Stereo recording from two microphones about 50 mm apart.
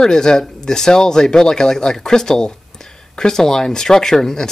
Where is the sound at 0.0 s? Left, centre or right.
Centre.